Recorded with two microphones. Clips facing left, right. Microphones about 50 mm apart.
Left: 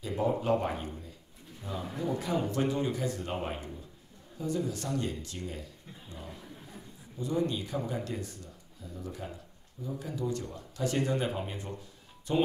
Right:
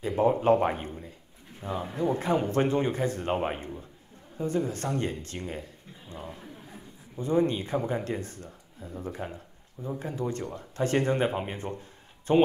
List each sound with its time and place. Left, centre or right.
0.0 s speech: right
6.2 s a man's voice: right